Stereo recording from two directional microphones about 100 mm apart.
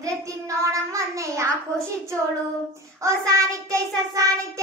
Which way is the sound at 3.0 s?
30° right (ahead or behind).